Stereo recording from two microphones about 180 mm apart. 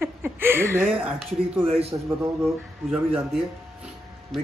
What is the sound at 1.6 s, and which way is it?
Speech, 35° right (ahead or behind).